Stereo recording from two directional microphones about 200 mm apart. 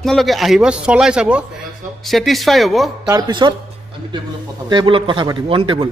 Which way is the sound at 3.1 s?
20° right (ahead or behind).